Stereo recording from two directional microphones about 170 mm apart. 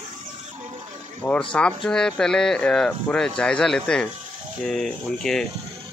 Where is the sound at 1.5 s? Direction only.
5° left (ahead or behind).